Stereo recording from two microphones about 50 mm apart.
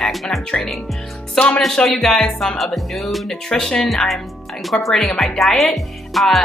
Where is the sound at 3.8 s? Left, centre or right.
Centre.